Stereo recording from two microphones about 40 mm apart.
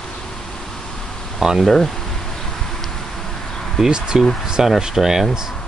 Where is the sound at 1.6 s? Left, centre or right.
Centre.